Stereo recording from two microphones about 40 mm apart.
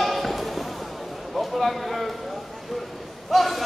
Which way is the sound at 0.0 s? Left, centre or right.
Centre.